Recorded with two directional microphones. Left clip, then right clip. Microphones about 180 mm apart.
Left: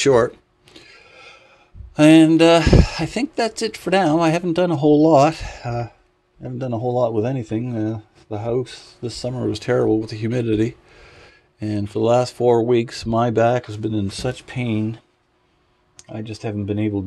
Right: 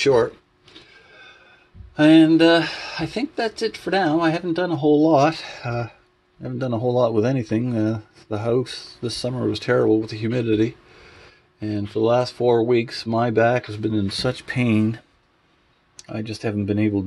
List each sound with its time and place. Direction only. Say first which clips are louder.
0.0 s speech: left 2 dB; 30° left (ahead or behind)
1.1 s a sound: left 1 dB; 25° left (ahead or behind)
2.0 s speech: left 2 dB; 25° left (ahead or behind); by 5.9 s centre (ahead or behind)
6.4 s speech: right 1 dB; 10° right (ahead or behind)
9.3 s speech: even; centre (ahead or behind)
13.7 s speech: right 1 dB; 5° right (ahead or behind)
14.5 s speech: right 3 dB; 15° right (ahead or behind)
16.1 s speech: right 2 dB; 15° right (ahead or behind)